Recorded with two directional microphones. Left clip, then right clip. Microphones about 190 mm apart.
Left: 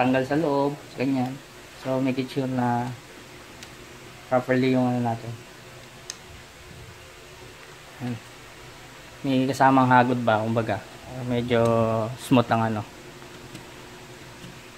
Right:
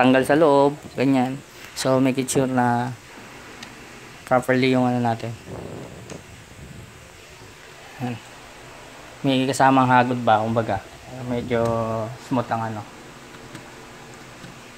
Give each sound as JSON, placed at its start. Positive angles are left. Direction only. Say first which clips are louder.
{"t": 0.0, "sound": "speech", "louder": "right 7 dB", "side_deg": -45}
{"t": 4.3, "sound": "speech", "louder": "right 3 dB", "side_deg": -40}
{"t": 9.2, "sound": "a man's voice", "louder": "right 2 dB", "side_deg": -25}
{"t": 11.6, "sound": "speech", "louder": "left 1 dB", "side_deg": 35}